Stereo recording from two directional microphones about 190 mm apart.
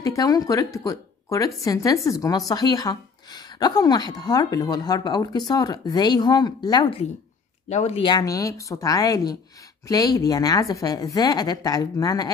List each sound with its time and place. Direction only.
0.0 s speech: 20° left (ahead or behind)